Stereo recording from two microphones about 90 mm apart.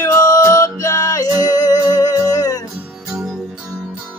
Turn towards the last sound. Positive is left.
turn(degrees=-5)  # may be behind; listen again after turning